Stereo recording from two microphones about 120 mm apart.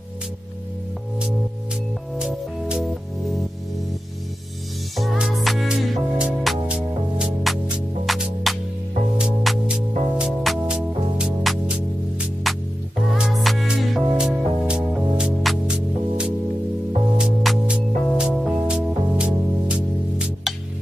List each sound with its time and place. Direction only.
2.1 s music: 10° right (ahead or behind)
4.9 s music: 5° right (ahead or behind)